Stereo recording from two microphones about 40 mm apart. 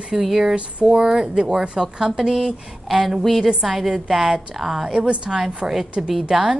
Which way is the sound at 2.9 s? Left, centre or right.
Centre.